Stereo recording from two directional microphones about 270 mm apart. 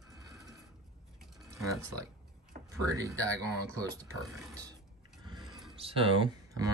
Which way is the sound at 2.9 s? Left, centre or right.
Centre.